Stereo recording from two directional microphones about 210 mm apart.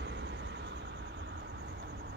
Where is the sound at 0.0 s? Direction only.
55° right (ahead or behind).